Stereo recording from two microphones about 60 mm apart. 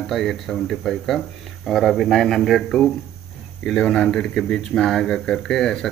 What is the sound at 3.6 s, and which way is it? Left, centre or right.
Speech, centre.